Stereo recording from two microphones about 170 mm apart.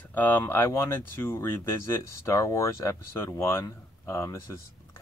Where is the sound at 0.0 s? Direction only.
10° left (ahead or behind).